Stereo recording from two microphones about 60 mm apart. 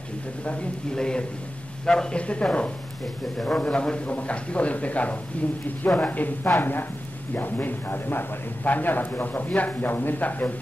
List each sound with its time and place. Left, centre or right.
0.5 s a man's voice: centre